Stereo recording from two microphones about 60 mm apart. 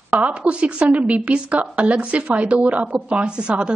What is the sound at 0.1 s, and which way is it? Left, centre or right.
A woman's voice, right.